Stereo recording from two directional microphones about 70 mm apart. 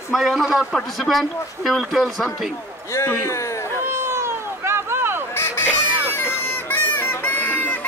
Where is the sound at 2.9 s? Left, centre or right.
Left.